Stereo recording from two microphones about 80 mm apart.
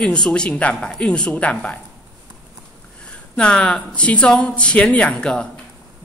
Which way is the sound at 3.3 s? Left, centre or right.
Centre.